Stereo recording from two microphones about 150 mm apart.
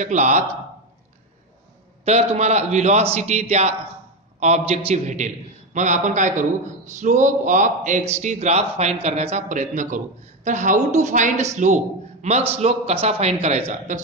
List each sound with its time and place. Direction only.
0.0 s a man's voice: 55° right (ahead or behind)
2.0 s a man's voice: 45° right (ahead or behind)